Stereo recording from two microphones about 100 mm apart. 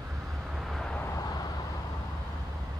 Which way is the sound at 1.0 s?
30° left (ahead or behind).